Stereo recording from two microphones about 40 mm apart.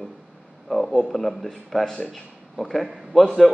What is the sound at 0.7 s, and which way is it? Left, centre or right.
A man's voice, centre.